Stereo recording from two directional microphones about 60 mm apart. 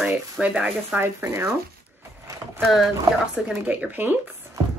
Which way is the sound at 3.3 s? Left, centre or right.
Right.